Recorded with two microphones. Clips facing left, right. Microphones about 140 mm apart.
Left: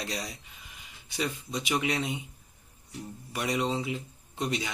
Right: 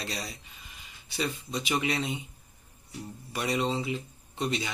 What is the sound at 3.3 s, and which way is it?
Speech, 10° left (ahead or behind).